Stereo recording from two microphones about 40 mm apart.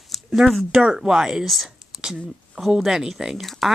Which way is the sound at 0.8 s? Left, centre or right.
Centre.